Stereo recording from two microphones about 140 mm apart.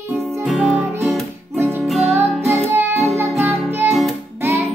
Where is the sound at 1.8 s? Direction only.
Centre (ahead or behind).